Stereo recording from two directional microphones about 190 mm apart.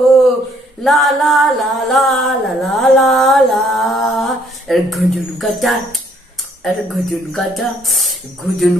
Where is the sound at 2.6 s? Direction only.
Centre (ahead or behind).